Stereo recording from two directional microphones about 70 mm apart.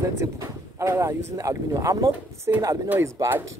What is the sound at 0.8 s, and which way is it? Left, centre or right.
Speech, right.